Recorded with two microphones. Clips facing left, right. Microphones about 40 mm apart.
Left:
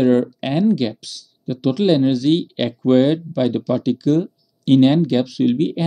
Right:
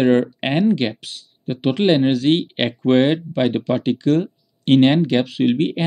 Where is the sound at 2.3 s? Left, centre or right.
Right.